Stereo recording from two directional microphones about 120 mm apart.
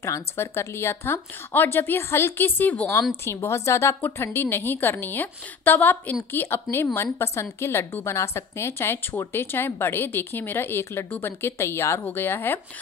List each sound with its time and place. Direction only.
0.0 s a woman's voice: 20° left (ahead or behind)
3.3 s a woman's voice: 25° left (ahead or behind)